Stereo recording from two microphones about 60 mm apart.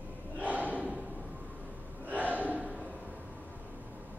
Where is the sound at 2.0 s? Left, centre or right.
Right.